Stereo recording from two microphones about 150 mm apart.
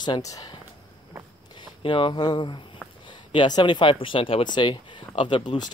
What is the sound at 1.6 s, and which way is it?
Speech, 35° left (ahead or behind).